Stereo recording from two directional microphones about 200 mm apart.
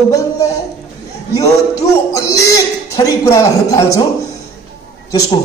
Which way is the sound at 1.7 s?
15° left (ahead or behind).